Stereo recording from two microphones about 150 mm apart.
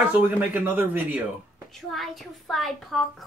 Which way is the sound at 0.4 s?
10° right (ahead or behind).